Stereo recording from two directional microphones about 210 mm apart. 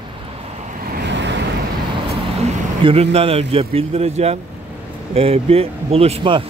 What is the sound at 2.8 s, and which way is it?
Speech, 30° right (ahead or behind).